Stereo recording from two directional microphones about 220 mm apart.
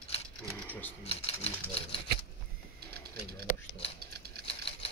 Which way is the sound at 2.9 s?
45° right (ahead or behind).